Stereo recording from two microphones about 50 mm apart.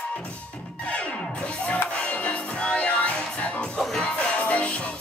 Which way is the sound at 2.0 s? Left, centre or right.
Left.